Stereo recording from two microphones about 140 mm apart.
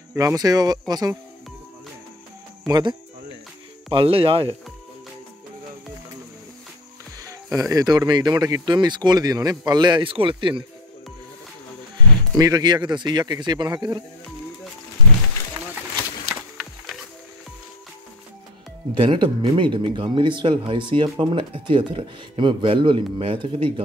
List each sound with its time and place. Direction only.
0.1 s speech: 20° right (ahead or behind)
2.6 s speech: 30° right (ahead or behind)
3.9 s speech: 40° right (ahead or behind)
7.5 s speech: 25° right (ahead or behind)
12.4 s speech: 25° right (ahead or behind)
16.3 s music: centre (ahead or behind)
18.9 s speech: 35° right (ahead or behind)